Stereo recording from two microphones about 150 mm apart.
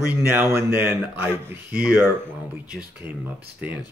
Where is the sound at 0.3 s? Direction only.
15° right (ahead or behind).